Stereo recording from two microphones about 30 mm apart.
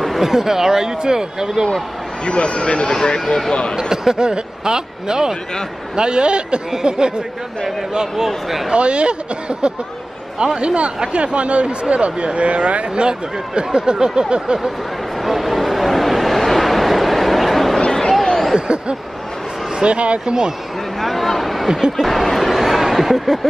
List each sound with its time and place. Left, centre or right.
0.2 s speech: centre
2.2 s speech: left
3.7 s speech: centre
8.7 s speech: right
15.2 s vehicle: centre
17.7 s a sound: centre
19.8 s speech: right
20.2 s speech: right
21.0 s speech: centre